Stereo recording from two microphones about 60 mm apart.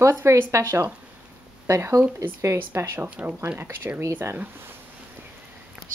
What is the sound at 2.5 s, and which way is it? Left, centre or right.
Speech, right.